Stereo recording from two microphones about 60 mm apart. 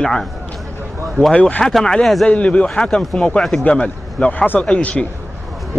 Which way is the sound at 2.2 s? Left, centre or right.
Left.